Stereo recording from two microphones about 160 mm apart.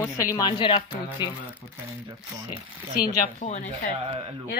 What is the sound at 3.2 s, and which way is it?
Speech, 50° left (ahead or behind).